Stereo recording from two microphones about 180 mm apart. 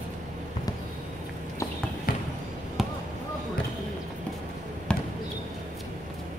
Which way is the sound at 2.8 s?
Centre (ahead or behind).